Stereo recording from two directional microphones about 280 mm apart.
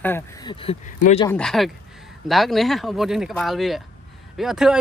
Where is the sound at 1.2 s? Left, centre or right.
Centre.